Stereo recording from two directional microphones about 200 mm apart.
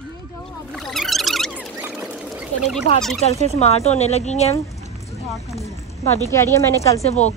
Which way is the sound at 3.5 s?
30° left (ahead or behind).